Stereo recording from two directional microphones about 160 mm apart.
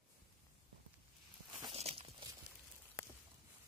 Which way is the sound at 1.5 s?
35° right (ahead or behind).